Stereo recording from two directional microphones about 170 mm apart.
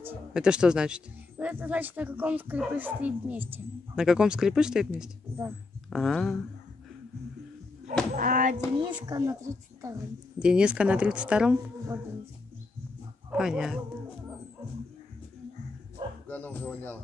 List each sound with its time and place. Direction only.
0.3 s speech: 5° right (ahead or behind)
8.2 s a sound: 50° right (ahead or behind)
8.7 s speech: 25° right (ahead or behind)
10.4 s speech: 5° right (ahead or behind)
11.5 s speech: 15° right (ahead or behind)
13.3 s speech: 5° right (ahead or behind)
16.3 s speech: 10° left (ahead or behind)